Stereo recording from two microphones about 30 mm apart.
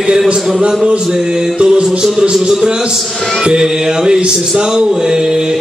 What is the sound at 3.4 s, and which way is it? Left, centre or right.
Music, right.